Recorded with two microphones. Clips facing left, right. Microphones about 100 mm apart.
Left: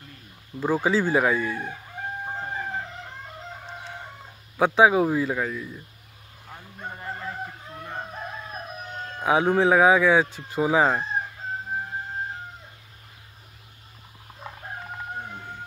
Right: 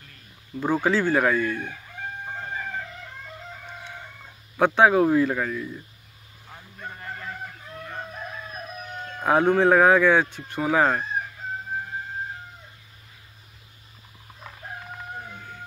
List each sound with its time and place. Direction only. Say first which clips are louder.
0.6 s speech: even; 5° left (ahead or behind)
2.2 s chicken: left 1 dB; 30° left (ahead or behind)
4.6 s speech: even; 5° left (ahead or behind)
6.8 s chicken: left 2 dB; 25° left (ahead or behind)
9.2 s speech: right 1 dB; centre (ahead or behind)